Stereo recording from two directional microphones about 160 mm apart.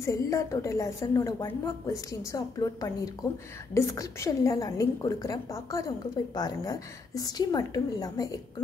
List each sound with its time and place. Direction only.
0.0 s a woman's voice: 20° left (ahead or behind)